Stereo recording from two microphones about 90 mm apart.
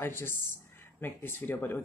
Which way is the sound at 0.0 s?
25° left (ahead or behind).